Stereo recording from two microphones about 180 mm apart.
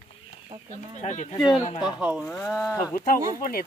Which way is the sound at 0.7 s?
40° left (ahead or behind).